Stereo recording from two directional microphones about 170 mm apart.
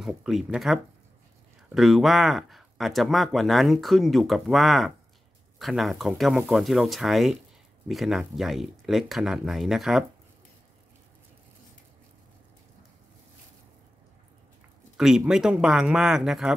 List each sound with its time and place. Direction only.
0.0 s speech: centre (ahead or behind)
15.0 s speech: 5° right (ahead or behind)